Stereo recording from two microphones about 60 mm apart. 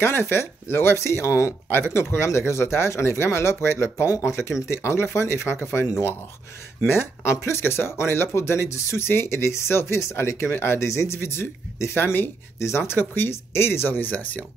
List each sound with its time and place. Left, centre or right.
0.0 s speech: left
6.9 s speech: left
12.5 s speech: left